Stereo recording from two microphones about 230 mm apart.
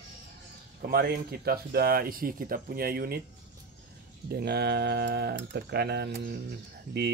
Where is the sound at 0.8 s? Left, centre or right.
Right.